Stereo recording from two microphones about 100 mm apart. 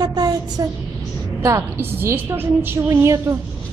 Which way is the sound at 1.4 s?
25° right (ahead or behind).